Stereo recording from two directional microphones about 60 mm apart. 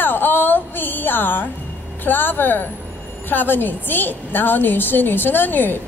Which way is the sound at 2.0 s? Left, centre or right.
Left.